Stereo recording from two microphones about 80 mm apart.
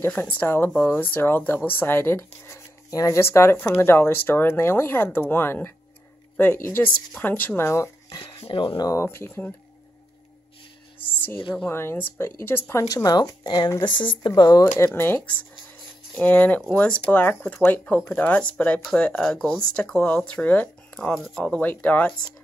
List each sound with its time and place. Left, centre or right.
0.1 s speech: centre
8.1 s speech: left
8.8 s speech: left
11.7 s speech: left
12.8 s speech: left
13.8 s speech: left
16.2 s speech: left
19.2 s speech: centre; by 22.1 s left